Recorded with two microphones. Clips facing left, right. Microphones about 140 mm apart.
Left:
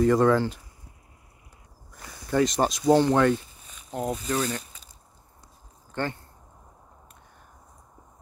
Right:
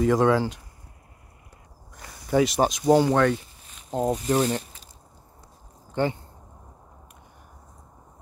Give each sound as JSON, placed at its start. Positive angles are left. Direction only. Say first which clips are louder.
{"t": 0.0, "sound": "speech", "louder": "even", "side_deg": 0}
{"t": 2.2, "sound": "speech", "louder": "right 2 dB", "side_deg": -5}
{"t": 4.0, "sound": "speech", "louder": "right 5 dB", "side_deg": -20}
{"t": 5.9, "sound": "a sound", "louder": "right 5 dB", "side_deg": -15}